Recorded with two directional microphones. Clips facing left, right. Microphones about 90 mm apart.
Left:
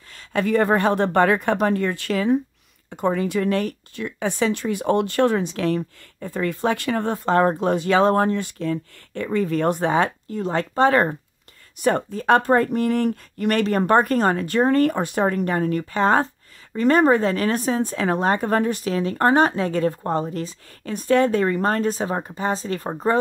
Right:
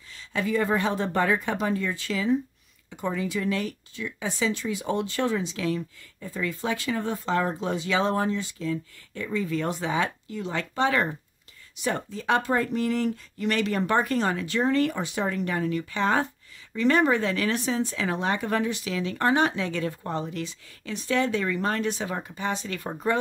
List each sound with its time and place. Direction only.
0.1 s speech: 55° left (ahead or behind); by 23.1 s 35° left (ahead or behind)